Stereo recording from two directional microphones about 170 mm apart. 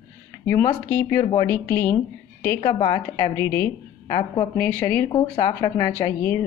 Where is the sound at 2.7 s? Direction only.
25° left (ahead or behind).